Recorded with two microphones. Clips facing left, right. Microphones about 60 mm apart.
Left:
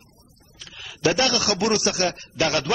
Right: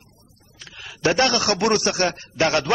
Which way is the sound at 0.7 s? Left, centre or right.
Right.